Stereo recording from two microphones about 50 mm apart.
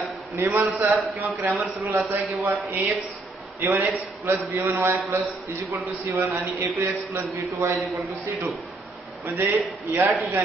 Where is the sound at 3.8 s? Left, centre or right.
Right.